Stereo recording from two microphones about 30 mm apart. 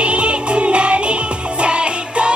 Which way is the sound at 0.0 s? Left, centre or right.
Right.